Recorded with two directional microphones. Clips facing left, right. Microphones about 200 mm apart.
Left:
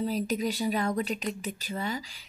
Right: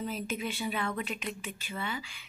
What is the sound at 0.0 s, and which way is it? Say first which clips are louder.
Speech: left 6 dB; 40° left (ahead or behind).